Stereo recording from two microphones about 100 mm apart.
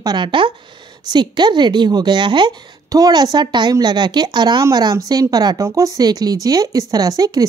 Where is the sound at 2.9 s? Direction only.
40° right (ahead or behind).